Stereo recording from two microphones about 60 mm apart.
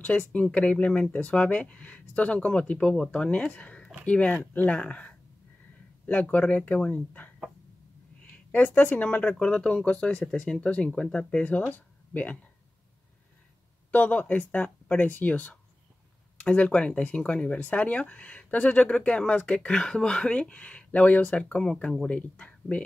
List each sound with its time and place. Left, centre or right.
0.3 s speech: centre
8.5 s speech: left
13.9 s speech: left